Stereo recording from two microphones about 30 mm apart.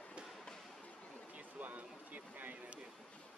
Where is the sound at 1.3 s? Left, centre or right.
Right.